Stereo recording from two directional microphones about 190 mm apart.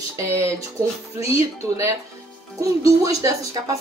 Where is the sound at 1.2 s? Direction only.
15° right (ahead or behind).